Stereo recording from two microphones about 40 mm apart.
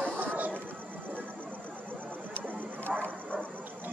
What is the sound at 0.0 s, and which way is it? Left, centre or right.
Music, right.